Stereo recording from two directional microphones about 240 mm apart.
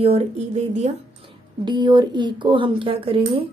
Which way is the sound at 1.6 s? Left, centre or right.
Centre.